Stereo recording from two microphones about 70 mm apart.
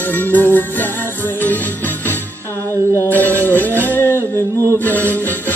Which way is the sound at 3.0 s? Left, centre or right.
Left.